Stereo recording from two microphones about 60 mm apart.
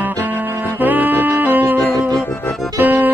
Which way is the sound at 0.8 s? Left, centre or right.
Right.